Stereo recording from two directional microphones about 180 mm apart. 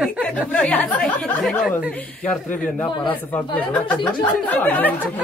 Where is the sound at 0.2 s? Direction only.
5° left (ahead or behind).